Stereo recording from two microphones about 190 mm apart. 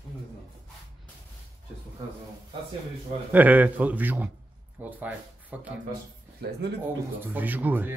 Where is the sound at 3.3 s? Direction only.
10° right (ahead or behind).